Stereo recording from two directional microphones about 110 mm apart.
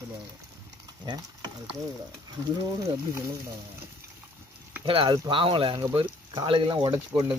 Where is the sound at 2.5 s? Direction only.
30° right (ahead or behind).